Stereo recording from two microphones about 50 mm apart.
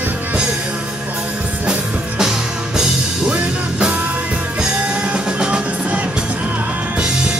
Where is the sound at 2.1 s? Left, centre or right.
Centre.